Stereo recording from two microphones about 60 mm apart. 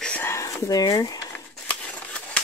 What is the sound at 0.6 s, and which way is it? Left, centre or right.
Speech, left.